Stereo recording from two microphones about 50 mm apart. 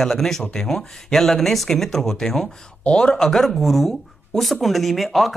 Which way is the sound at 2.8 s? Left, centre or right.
Left.